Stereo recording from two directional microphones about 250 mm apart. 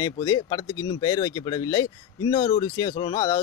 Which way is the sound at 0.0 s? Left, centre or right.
Centre.